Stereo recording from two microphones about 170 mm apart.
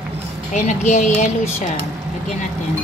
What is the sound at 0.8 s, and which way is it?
Speech, 45° left (ahead or behind).